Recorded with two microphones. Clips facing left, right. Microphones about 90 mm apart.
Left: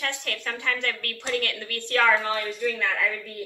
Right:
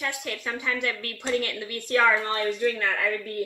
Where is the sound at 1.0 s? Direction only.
60° left (ahead or behind).